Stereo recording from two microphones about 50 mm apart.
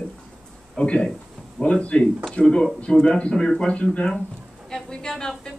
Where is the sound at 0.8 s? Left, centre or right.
Centre.